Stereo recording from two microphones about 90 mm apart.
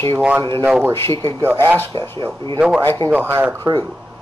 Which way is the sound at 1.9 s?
65° right (ahead or behind).